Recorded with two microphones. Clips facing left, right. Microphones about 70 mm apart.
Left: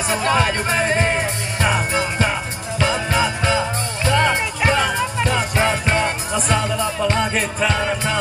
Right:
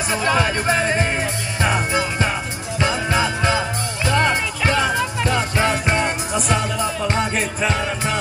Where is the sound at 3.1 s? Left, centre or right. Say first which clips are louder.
Even; right.